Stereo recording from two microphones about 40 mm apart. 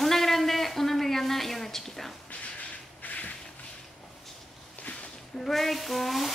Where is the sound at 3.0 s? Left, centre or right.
Left.